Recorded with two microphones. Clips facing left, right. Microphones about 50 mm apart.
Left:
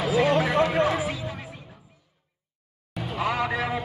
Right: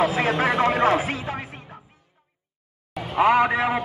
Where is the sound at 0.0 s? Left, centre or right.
Right.